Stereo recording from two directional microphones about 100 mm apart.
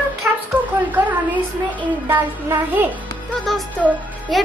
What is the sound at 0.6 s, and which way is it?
A child's voice, 20° right (ahead or behind).